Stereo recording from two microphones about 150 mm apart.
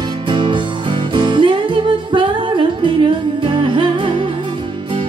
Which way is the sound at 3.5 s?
35° right (ahead or behind).